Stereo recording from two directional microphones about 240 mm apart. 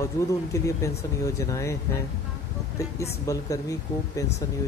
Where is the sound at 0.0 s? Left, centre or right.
Centre.